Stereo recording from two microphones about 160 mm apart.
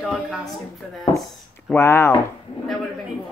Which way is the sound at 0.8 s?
Centre (ahead or behind).